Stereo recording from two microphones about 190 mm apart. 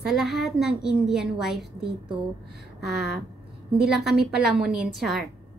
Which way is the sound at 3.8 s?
Centre (ahead or behind).